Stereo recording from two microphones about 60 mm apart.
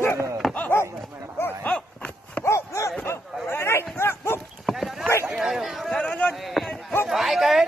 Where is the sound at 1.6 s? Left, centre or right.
Centre.